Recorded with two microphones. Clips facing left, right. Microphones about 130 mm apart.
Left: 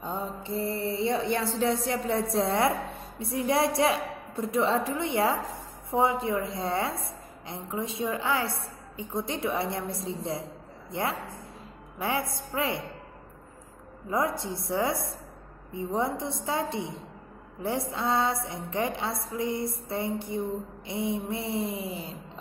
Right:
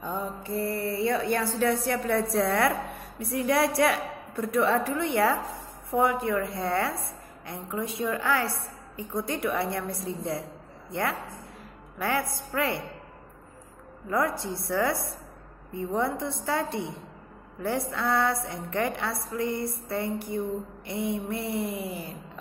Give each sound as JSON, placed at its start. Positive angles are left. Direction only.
{"t": 0.0, "sound": "mantra", "side_deg": 25}
{"t": 1.9, "sound": "a woman's voice", "side_deg": 20}
{"t": 14.0, "sound": "a woman's voice", "side_deg": 20}